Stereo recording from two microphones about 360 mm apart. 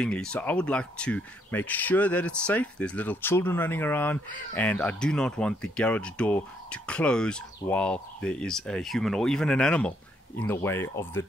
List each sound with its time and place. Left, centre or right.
0.0 s speech: centre